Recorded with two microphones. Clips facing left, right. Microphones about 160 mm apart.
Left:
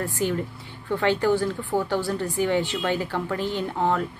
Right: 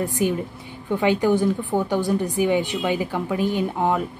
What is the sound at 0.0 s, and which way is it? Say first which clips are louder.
A woman's voice: right 3 dB; 15° right (ahead or behind).